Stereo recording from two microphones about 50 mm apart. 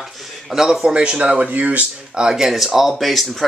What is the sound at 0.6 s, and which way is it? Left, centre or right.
Speech, centre.